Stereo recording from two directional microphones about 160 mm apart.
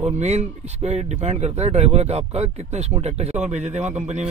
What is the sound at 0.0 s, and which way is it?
Speech, 45° right (ahead or behind).